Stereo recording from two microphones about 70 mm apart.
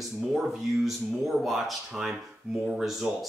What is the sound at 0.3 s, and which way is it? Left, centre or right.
Speech, centre.